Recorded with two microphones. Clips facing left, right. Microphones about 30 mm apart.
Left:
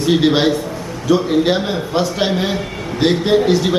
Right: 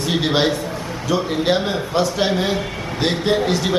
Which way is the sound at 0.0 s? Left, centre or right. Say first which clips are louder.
Left 5 dB; centre.